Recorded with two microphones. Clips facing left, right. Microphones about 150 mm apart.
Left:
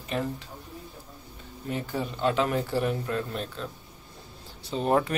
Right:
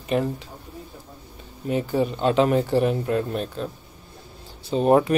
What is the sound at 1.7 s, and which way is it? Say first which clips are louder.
Speech: right 9 dB; 20° right (ahead or behind).